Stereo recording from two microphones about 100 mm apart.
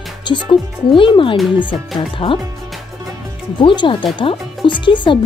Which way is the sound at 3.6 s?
55° left (ahead or behind).